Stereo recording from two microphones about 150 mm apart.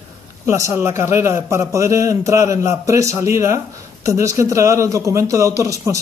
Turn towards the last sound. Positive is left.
turn(degrees=-20)  # may be behind; listen again after turning